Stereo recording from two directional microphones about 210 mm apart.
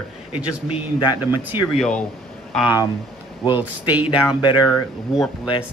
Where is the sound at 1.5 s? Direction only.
20° left (ahead or behind).